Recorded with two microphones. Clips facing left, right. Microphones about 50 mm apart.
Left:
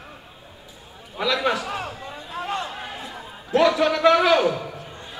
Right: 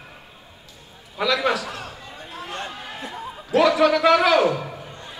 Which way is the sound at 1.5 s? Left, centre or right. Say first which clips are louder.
Left 2 dB; left.